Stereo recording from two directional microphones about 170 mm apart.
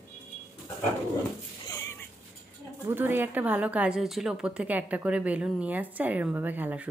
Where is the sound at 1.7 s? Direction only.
20° left (ahead or behind).